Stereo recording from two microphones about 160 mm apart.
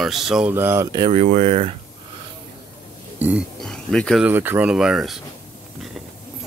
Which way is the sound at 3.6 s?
5° left (ahead or behind).